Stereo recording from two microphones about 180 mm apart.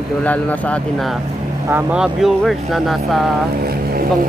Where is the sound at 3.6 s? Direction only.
55° right (ahead or behind).